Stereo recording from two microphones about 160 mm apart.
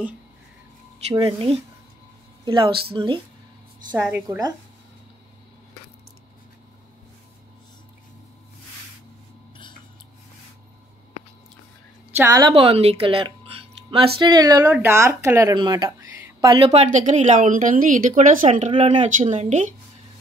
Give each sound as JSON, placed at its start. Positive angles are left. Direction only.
{"t": 1.1, "sound": "speech", "side_deg": -30}
{"t": 3.9, "sound": "speech", "side_deg": -15}
{"t": 12.2, "sound": "a woman's voice", "side_deg": -25}
{"t": 18.5, "sound": "a woman's voice", "side_deg": -35}